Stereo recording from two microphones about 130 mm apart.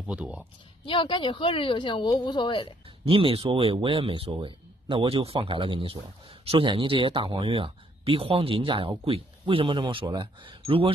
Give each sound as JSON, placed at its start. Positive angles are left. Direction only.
{"t": 0.0, "sound": "speech", "side_deg": -10}
{"t": 0.8, "sound": "speech", "side_deg": 40}
{"t": 3.1, "sound": "speech", "side_deg": -45}